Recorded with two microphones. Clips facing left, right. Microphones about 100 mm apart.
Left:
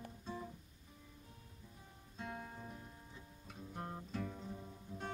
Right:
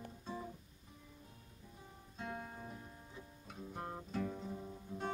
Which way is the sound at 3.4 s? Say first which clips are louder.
Right 1 dB; 10° right (ahead or behind).